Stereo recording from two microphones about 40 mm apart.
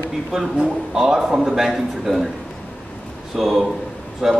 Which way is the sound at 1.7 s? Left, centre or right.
Centre.